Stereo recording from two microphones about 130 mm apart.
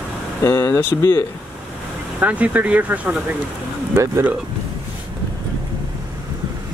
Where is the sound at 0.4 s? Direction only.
20° left (ahead or behind).